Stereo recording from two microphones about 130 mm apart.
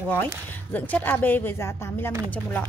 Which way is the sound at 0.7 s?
15° left (ahead or behind).